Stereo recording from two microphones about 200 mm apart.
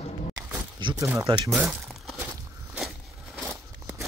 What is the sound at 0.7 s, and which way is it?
Speech, 25° right (ahead or behind).